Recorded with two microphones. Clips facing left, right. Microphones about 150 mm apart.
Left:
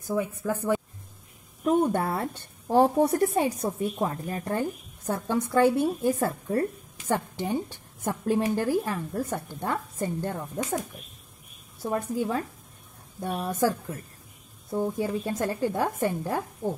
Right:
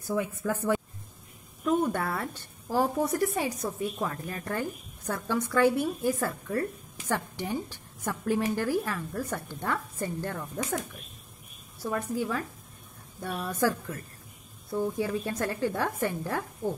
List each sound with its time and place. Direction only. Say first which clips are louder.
0.0 s a woman's voice: left 2 dB; 15° left (ahead or behind)
1.6 s a woman's voice: left 3 dB; 30° left (ahead or behind)
11.8 s a woman's voice: left 2 dB; 25° left (ahead or behind)
15.0 s a woman's voice: left 2 dB; 20° left (ahead or behind)